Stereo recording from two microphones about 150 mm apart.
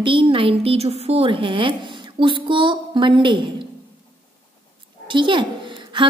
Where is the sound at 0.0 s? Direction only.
35° right (ahead or behind).